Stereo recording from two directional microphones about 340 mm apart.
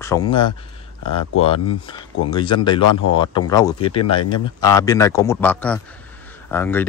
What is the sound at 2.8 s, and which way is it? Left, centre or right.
Speech, left.